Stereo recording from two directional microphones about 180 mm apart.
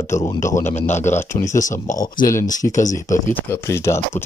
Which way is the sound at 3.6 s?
15° left (ahead or behind).